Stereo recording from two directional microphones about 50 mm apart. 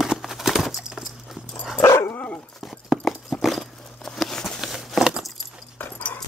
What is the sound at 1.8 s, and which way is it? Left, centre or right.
Dog, left.